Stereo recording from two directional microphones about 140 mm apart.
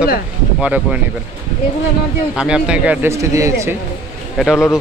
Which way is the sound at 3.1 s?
20° right (ahead or behind).